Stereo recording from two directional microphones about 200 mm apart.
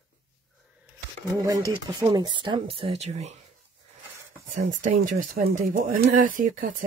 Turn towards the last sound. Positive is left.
turn(degrees=-45)  # may be behind; listen again after turning